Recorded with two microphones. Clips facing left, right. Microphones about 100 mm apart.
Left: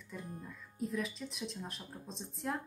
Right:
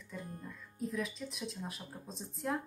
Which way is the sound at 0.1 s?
5° left (ahead or behind).